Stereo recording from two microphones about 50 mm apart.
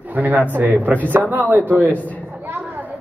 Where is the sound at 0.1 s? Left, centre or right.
Right.